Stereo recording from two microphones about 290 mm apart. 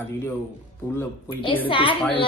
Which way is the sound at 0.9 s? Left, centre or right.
Centre.